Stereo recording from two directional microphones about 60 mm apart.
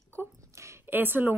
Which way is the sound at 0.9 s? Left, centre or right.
Right.